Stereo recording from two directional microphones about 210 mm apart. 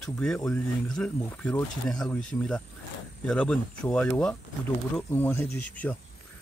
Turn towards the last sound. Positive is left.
turn(degrees=5)  # may be behind; listen again after turning